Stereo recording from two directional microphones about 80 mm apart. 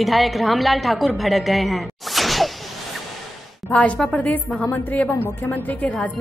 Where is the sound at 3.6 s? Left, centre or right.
Centre.